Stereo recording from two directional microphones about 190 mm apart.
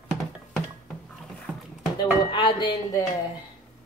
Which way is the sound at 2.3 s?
25° left (ahead or behind).